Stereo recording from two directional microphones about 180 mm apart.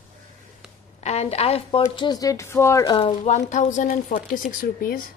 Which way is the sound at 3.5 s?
45° left (ahead or behind).